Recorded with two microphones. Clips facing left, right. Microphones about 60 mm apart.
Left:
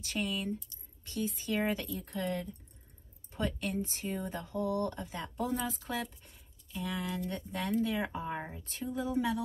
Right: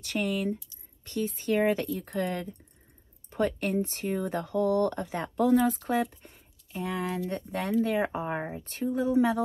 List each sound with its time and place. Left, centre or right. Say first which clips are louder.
0.0 s speech: right 6 dB; right
6.3 s speech: right 5 dB; right